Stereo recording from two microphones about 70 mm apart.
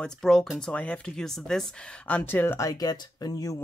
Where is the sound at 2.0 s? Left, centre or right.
Left.